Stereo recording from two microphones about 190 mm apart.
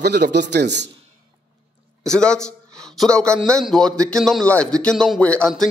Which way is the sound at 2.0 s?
5° left (ahead or behind).